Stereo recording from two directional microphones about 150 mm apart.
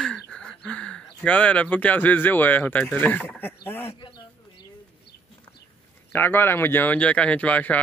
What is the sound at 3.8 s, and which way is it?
Bird, 30° left (ahead or behind).